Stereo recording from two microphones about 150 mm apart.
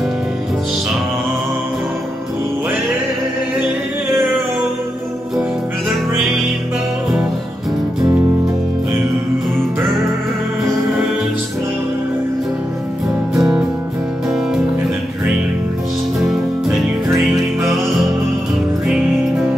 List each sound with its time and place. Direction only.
4.1 s music: 15° right (ahead or behind)
13.3 s music: centre (ahead or behind)
16.2 s music: centre (ahead or behind)